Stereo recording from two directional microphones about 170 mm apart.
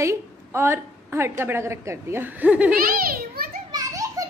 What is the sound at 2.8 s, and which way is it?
Children playing, 60° right (ahead or behind).